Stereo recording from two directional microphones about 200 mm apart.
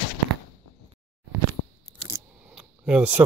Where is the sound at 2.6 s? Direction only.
5° right (ahead or behind).